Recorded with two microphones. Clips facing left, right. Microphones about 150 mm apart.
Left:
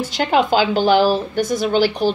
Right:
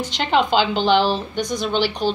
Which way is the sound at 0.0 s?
5° left (ahead or behind).